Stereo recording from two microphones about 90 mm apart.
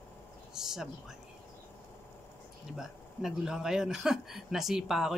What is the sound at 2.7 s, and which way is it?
A man's voice, 5° right (ahead or behind).